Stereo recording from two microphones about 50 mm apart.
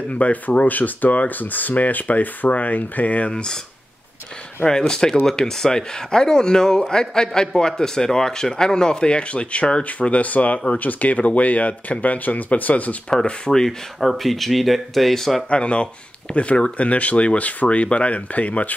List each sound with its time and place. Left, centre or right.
0.1 s speech: left
4.6 s speech: centre; by 12.9 s left
13.1 s speech: centre
13.9 s speech: centre
15.5 s speech: left